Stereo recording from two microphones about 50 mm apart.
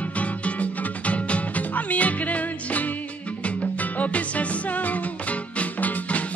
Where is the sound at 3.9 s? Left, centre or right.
Left.